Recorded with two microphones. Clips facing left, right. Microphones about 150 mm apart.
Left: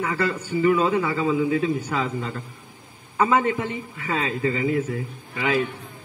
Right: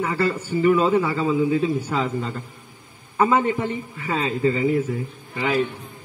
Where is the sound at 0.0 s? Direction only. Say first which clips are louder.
Right 2 dB; 10° right (ahead or behind).